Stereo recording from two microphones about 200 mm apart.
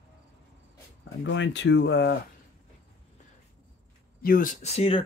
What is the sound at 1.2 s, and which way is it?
Speech, 65° left (ahead or behind).